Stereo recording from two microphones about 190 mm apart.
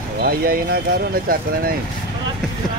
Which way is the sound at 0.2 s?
50° right (ahead or behind).